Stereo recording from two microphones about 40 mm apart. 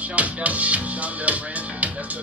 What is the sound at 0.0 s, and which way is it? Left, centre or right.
Music, right.